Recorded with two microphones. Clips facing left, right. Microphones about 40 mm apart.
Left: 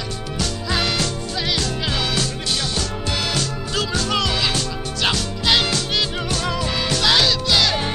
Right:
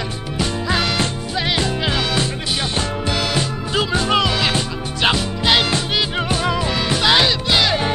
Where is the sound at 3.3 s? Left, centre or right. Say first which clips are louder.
Right 3 dB; right.